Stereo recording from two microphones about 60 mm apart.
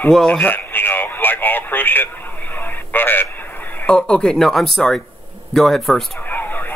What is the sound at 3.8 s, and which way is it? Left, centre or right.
Speech, centre.